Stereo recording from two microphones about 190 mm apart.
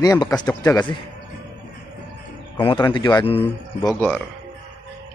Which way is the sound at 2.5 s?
25° left (ahead or behind).